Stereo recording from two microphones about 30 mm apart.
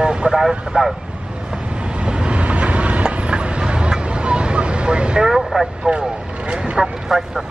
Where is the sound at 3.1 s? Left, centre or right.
Right.